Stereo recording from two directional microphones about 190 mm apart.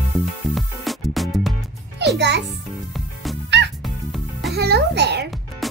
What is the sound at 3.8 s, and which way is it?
Music, centre (ahead or behind).